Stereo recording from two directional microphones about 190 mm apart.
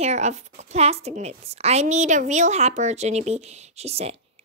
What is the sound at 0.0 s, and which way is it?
A woman's voice, 35° right (ahead or behind).